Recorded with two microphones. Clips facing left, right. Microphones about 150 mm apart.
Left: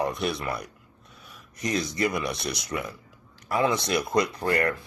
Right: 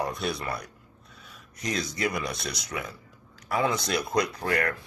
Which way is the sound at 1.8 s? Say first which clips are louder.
Left 3 dB; centre (ahead or behind).